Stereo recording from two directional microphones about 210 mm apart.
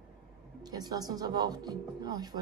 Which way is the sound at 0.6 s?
20° right (ahead or behind).